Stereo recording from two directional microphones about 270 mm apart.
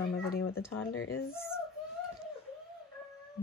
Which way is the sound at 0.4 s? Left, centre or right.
Left.